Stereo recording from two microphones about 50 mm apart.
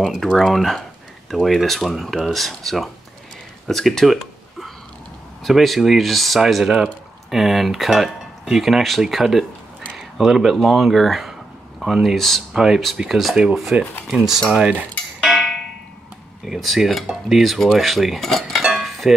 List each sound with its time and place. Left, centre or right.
0.4 s speech: centre
3.6 s a sound: centre
5.4 s speech: centre
6.5 s speech: centre
12.5 s speech: centre
13.4 s speech: centre
15.2 s a sound: centre
16.5 s speech: centre
18.6 s a sound: centre